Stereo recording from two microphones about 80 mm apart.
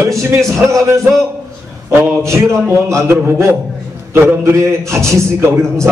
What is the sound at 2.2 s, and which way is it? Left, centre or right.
A man's voice, right.